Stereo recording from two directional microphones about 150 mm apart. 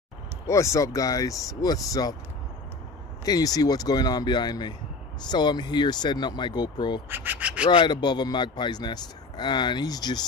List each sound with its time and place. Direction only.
0.5 s speech: 20° left (ahead or behind)
3.3 s speech: 25° left (ahead or behind)
7.1 s speech: 15° right (ahead or behind)
7.7 s speech: 30° left (ahead or behind)